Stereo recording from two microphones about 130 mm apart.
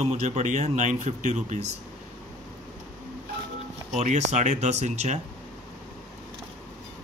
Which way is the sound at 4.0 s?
60° right (ahead or behind).